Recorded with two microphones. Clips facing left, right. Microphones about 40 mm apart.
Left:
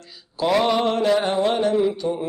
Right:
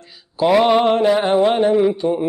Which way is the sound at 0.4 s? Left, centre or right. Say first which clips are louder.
Right 6 dB; centre.